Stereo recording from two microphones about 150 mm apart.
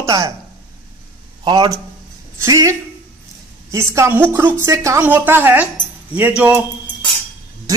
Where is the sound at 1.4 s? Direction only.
25° right (ahead or behind); by 6.6 s 10° right (ahead or behind).